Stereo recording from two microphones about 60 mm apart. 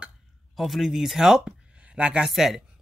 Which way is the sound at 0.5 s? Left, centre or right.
Centre.